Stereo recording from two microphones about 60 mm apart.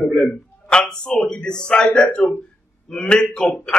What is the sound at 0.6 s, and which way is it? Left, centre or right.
A man's voice, centre.